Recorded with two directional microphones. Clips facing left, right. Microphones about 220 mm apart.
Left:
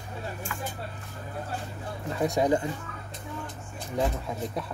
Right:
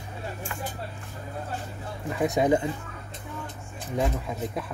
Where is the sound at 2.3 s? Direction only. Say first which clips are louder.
Right 2 dB; 20° right (ahead or behind).